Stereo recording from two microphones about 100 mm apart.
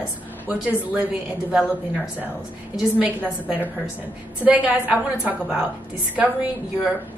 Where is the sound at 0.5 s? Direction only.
10° right (ahead or behind).